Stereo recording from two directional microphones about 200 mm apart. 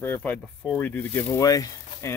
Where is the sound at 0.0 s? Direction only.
10° left (ahead or behind).